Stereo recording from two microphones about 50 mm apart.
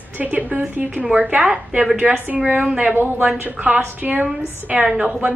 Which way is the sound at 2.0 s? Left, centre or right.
Centre.